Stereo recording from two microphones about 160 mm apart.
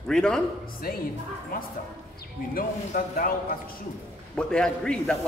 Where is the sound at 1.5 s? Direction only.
65° left (ahead or behind).